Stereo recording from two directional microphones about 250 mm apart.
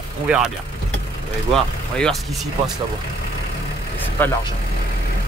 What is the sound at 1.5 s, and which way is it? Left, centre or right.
Speech, centre.